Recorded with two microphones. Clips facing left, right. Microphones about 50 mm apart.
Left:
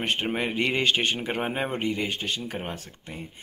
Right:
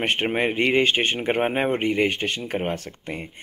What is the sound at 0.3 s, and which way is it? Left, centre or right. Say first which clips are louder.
Speech: right 7 dB; right.